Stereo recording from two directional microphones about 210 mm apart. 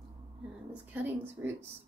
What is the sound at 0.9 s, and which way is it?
Speech, 10° right (ahead or behind).